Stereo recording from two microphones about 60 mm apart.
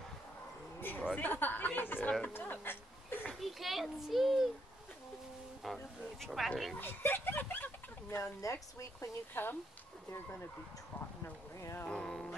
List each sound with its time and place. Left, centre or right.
0.7 s a sound: left
1.1 s speech: left
3.3 s a child's voice: centre
5.6 s a child's voice: centre
6.8 s speech: left
8.1 s speech: left
9.3 s speech: left
11.9 s music: centre